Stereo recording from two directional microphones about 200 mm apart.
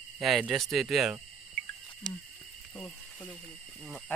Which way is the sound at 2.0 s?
20° left (ahead or behind).